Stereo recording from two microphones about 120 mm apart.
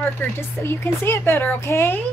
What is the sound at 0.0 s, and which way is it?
Speech, 20° left (ahead or behind).